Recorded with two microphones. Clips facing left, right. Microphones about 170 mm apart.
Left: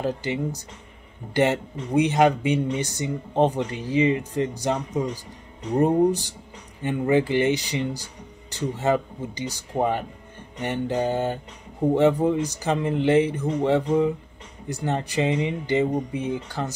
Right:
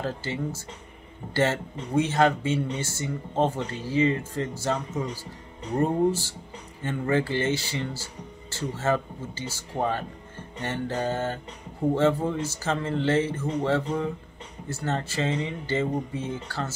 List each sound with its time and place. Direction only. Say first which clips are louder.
0.0 s speech: left 4 dB; 15° left (ahead or behind)